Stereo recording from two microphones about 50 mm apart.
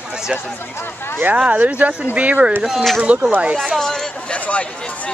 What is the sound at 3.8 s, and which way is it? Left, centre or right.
Speech, centre.